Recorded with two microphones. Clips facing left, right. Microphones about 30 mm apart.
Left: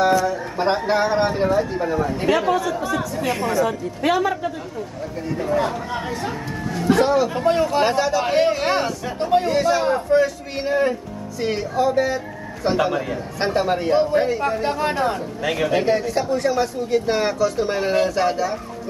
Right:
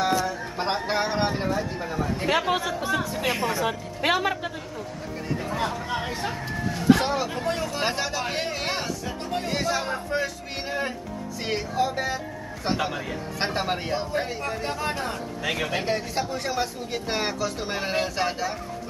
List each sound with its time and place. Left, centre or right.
0.3 s speech: centre
2.2 s speech: centre
3.3 s speech: centre
3.6 s speech: right
5.4 s speech: centre
7.3 s speech: left
7.8 s speech: centre
8.2 s speech: centre
9.5 s speech: centre
10.1 s speech: centre
13.9 s speech: centre
15.4 s speech: centre